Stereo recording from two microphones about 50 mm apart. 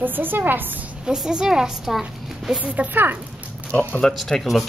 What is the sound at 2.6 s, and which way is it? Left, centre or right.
Speech, right.